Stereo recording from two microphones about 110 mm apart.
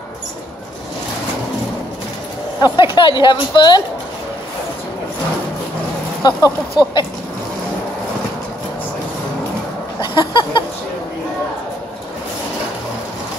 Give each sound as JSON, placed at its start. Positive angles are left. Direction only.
{"t": 2.6, "sound": "speech", "side_deg": 45}
{"t": 6.2, "sound": "speech", "side_deg": 40}
{"t": 9.9, "sound": "a sound", "side_deg": 45}